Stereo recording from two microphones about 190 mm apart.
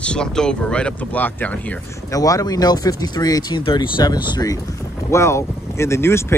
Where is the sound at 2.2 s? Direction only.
20° left (ahead or behind).